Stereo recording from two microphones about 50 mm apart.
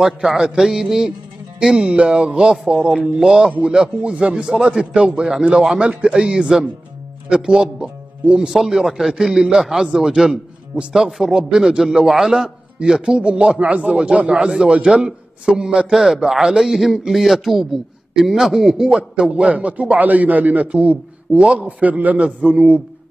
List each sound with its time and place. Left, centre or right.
0.0 s a man's voice: centre
12.7 s a man's voice: centre
18.9 s a man's voice: centre